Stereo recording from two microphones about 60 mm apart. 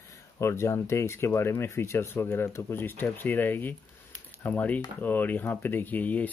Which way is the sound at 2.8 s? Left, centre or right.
Left.